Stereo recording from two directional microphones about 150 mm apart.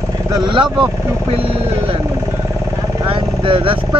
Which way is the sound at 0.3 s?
30° right (ahead or behind).